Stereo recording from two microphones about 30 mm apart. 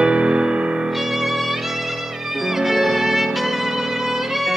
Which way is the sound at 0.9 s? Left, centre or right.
Centre.